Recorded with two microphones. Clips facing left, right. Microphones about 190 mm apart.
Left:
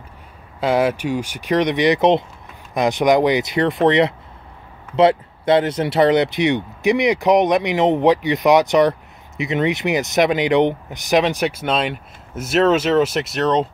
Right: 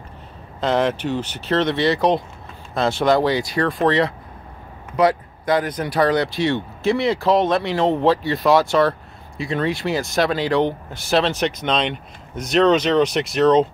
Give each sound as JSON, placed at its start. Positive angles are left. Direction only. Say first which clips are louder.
{"t": 0.6, "sound": "speech", "louder": "left 2 dB", "side_deg": 10}